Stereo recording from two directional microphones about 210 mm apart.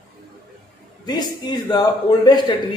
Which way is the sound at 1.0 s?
20° left (ahead or behind).